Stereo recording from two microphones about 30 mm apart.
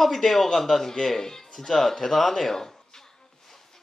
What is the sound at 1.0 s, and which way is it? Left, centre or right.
Music, centre.